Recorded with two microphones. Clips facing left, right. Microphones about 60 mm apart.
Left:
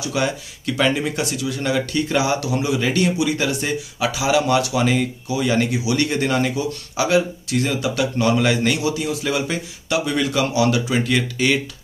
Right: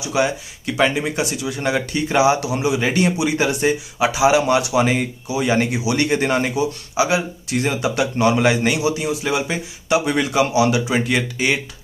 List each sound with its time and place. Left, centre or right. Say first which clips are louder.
0.0 s speech: right 2 dB; centre